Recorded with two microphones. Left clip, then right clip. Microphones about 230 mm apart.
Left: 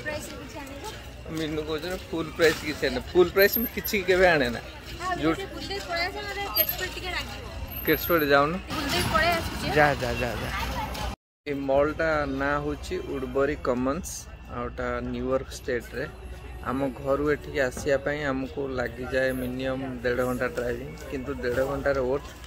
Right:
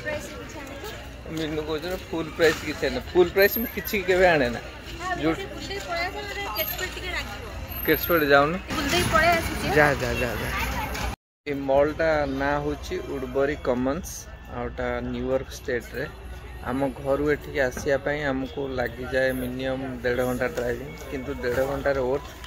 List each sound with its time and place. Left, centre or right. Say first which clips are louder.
1.4 s speech: right 1 dB; centre
5.7 s speech: even; centre
6.5 s speech: right 1 dB; left
7.0 s speech: even; left
7.8 s speech: right 2 dB; centre
8.8 s speech: right 3 dB; centre
11.4 s speech: right 2 dB; centre